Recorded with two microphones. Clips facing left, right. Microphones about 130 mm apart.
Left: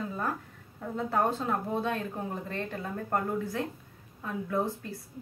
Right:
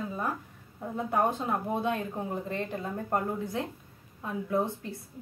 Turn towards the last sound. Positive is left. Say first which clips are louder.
# right 1 dB
turn(degrees=-20)  # may be behind; listen again after turning